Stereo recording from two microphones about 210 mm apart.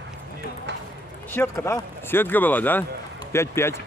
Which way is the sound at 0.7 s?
55° right (ahead or behind).